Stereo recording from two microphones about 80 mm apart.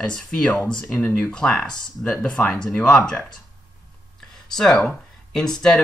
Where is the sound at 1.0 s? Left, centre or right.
Left.